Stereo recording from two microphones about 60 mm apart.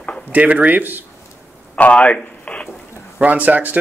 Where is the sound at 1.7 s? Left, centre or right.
Left.